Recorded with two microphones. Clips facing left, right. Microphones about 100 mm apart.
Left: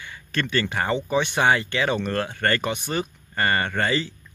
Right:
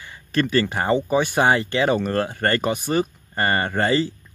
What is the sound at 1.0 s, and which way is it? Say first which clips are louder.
Speech: right 3 dB; 10° right (ahead or behind).